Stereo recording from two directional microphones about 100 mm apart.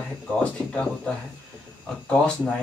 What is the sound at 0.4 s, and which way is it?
Speech, 15° left (ahead or behind).